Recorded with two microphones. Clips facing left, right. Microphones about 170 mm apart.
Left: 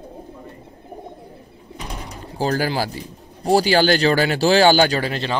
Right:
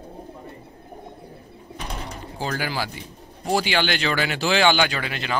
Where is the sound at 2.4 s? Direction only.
35° left (ahead or behind).